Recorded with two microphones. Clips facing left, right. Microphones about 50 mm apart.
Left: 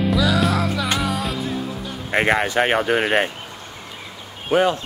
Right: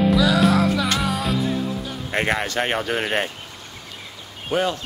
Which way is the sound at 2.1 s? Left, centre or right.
Centre.